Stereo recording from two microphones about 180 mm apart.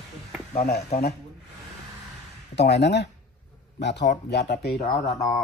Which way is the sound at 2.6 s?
70° left (ahead or behind).